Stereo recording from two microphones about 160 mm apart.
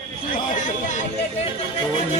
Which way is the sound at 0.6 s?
50° left (ahead or behind).